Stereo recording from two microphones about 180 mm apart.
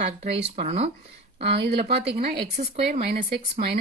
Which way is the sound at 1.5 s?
65° right (ahead or behind).